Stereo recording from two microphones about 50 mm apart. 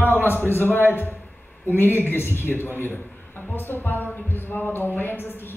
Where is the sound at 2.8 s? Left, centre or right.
Left.